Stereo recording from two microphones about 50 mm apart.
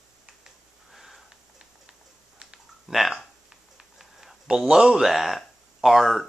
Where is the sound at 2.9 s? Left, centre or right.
Centre.